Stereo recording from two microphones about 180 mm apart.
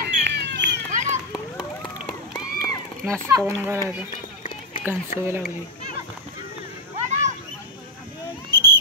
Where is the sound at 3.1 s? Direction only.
15° right (ahead or behind).